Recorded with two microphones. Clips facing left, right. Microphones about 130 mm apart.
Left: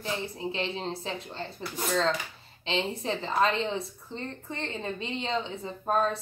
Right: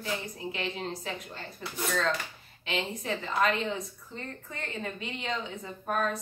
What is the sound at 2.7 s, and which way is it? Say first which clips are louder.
A woman's voice: left 3 dB; 30° left (ahead or behind).